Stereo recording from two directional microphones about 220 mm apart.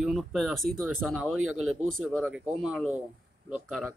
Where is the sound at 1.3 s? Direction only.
70° right (ahead or behind).